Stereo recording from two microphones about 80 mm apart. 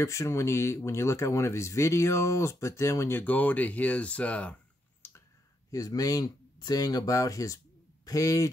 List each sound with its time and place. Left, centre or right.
0.0 s speech: left; by 4.6 s centre
5.0 s a sound: left
5.7 s speech: left